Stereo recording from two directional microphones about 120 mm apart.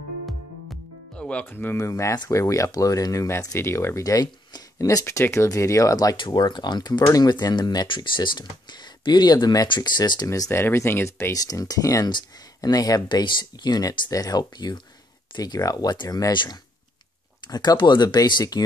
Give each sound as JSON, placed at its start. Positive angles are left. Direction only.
{"t": 1.1, "sound": "speech", "side_deg": 10}